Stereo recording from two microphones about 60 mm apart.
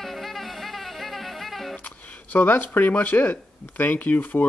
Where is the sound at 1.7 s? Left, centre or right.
Left.